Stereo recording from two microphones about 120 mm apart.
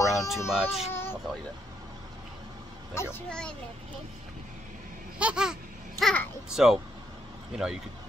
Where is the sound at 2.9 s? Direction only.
20° left (ahead or behind).